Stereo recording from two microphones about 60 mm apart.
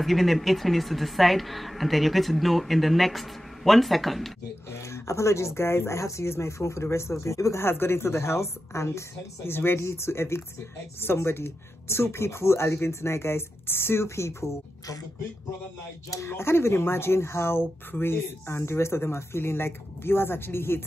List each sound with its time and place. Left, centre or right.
0.0 s a woman's voice: centre
4.6 s speech: left
7.6 s speech: left
9.5 s speech: left
16.3 s speech: left